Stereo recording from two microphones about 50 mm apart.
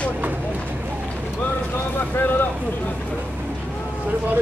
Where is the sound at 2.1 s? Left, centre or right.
Left.